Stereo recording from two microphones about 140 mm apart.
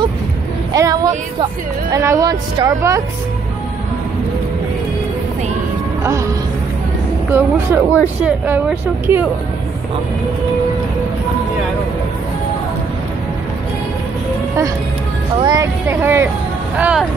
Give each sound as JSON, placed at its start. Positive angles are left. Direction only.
{"t": 0.7, "sound": "speech", "side_deg": -25}
{"t": 6.0, "sound": "a woman's voice", "side_deg": -20}
{"t": 15.4, "sound": "a woman's voice", "side_deg": -25}